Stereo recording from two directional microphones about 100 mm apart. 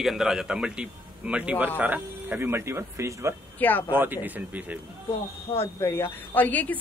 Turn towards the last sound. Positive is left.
turn(degrees=20)  # may be behind; listen again after turning